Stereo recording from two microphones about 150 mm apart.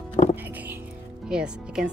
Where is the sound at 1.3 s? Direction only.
5° right (ahead or behind).